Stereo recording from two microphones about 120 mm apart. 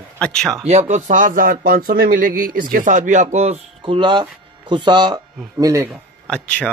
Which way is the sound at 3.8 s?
40° right (ahead or behind).